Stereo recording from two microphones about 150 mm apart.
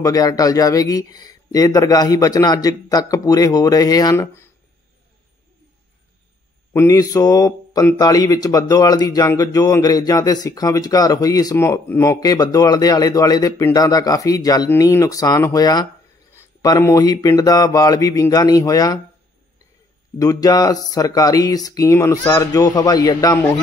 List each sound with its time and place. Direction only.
0.0 s a man's voice: 25° left (ahead or behind)
6.7 s a man's voice: 20° left (ahead or behind)
20.2 s a man's voice: 25° left (ahead or behind)